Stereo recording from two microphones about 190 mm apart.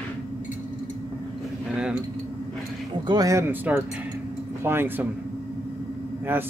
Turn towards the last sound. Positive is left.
turn(degrees=-10)  # may be behind; listen again after turning